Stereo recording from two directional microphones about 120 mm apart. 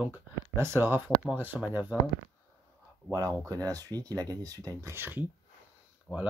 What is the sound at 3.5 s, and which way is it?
Speech, 30° right (ahead or behind).